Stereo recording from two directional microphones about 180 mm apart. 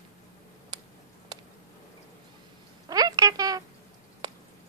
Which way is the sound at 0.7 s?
25° right (ahead or behind).